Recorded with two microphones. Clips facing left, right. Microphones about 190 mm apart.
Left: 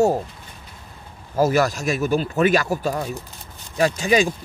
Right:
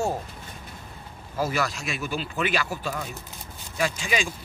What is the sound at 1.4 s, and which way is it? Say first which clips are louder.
Speech: left 9 dB; 45° left (ahead or behind).